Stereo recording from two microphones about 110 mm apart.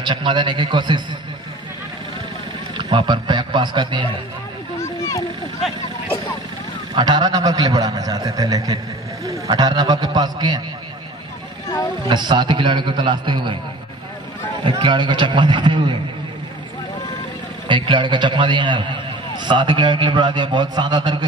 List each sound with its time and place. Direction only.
0.0 s a man's voice: 45° right (ahead or behind)
2.8 s a man's voice: 45° right (ahead or behind)
4.7 s a sound: 30° left (ahead or behind)
7.0 s a man's voice: 40° right (ahead or behind)
12.1 s a man's voice: 45° right (ahead or behind)
14.6 s a man's voice: 45° right (ahead or behind)
17.6 s a man's voice: 45° right (ahead or behind)